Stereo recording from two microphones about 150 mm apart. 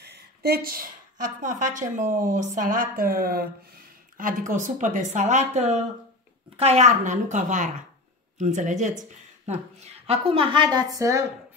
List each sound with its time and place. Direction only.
0.0 s a woman's voice: 90° right
4.2 s a woman's voice: 60° right (ahead or behind)
10.0 s a woman's voice: 40° right (ahead or behind); by 11.2 s 20° right (ahead or behind)